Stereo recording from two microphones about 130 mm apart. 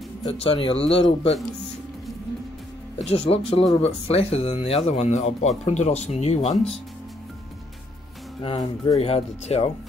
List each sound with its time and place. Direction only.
0.3 s speech: 45° left (ahead or behind)
3.1 s speech: 45° left (ahead or behind)
8.4 s speech: 45° left (ahead or behind)